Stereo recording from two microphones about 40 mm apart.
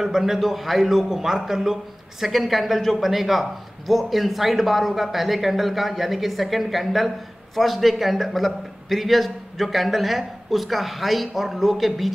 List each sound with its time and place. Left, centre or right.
0.0 s a man's voice: centre